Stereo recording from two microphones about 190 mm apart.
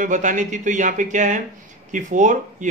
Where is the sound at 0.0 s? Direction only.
40° right (ahead or behind).